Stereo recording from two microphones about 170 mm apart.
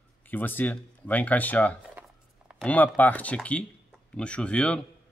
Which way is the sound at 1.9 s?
5° right (ahead or behind).